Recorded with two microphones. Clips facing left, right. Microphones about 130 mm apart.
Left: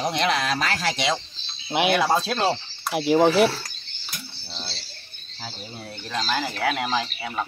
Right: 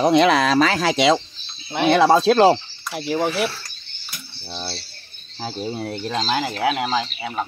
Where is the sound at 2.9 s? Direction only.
20° left (ahead or behind).